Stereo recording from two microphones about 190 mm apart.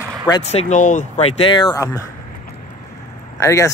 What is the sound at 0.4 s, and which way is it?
Speech, 35° left (ahead or behind).